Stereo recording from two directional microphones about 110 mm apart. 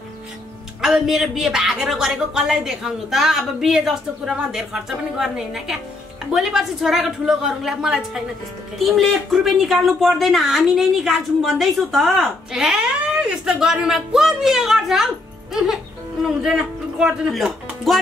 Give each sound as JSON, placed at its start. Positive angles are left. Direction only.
{"t": 0.7, "sound": "speech", "side_deg": -5}